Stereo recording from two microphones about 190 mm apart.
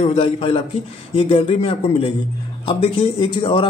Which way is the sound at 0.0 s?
30° left (ahead or behind).